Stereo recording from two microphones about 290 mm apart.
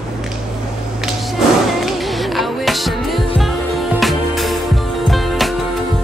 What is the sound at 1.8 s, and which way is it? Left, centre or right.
Music, centre.